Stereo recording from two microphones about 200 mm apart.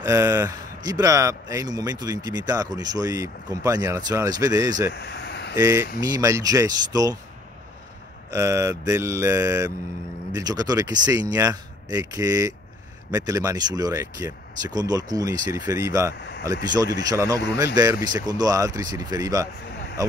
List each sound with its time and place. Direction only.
0.0 s speech: 15° right (ahead or behind)
4.9 s vehicle: 55° left (ahead or behind)
5.6 s speech: 15° right (ahead or behind)
8.3 s speech: 15° right (ahead or behind)